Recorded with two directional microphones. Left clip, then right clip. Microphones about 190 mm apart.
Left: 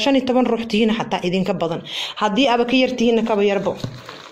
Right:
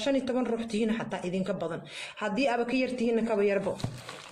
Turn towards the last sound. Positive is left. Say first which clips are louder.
# left 9 dB
turn(degrees=35)  # may be behind; listen again after turning